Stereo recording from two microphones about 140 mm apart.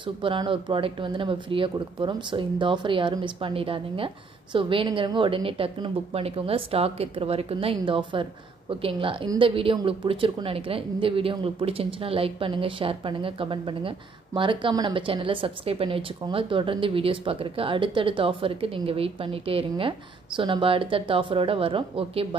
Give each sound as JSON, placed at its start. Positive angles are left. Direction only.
{"t": 0.0, "sound": "speech", "side_deg": -35}